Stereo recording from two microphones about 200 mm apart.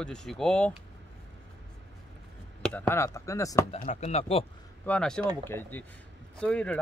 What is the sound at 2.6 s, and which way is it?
Speech, 10° left (ahead or behind).